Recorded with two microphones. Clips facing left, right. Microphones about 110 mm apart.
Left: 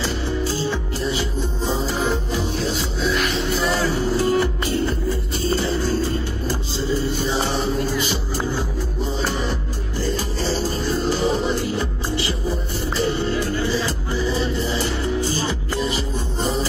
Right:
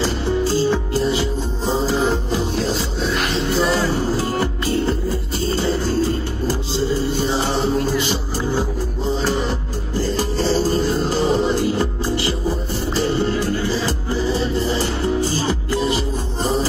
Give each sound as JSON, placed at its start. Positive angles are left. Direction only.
{"t": 0.7, "sound": "music", "side_deg": -40}
{"t": 7.2, "sound": "music", "side_deg": -35}
{"t": 9.9, "sound": "music", "side_deg": -35}